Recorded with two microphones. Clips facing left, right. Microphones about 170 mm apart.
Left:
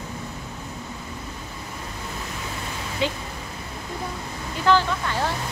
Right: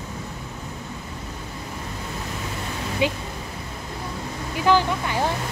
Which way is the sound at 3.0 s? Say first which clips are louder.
Right 2 dB; 15° right (ahead or behind).